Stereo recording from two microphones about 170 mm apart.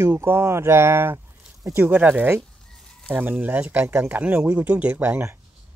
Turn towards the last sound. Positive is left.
turn(degrees=-15)  # may be behind; listen again after turning